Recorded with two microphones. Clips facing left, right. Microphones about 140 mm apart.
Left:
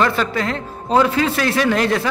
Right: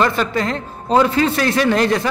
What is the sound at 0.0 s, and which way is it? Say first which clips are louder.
A man's voice: right 1 dB; centre (ahead or behind).